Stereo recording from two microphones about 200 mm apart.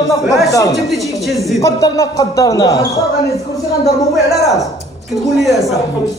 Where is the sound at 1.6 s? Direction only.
15° left (ahead or behind).